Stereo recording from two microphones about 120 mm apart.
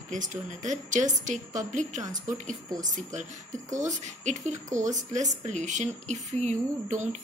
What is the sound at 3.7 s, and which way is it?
A woman's voice, 85° right.